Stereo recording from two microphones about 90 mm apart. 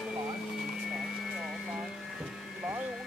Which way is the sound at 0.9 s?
5° right (ahead or behind).